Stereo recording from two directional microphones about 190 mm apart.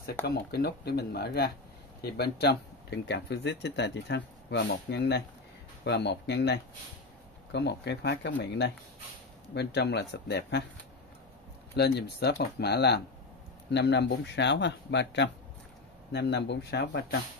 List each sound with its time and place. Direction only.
0.0 s speech: 55° left (ahead or behind)
11.7 s speech: 60° left (ahead or behind)